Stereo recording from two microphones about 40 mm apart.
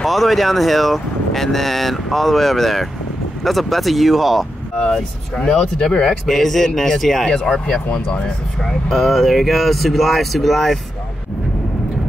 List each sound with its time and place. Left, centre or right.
0.0 s speech: centre
4.9 s speech: centre
6.2 s speech: centre
7.6 s speech: left
8.6 s speech: centre